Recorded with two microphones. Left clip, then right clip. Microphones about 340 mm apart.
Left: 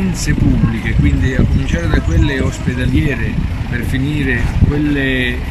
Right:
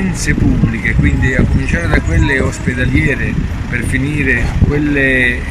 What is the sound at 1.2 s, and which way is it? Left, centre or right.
Speech, centre.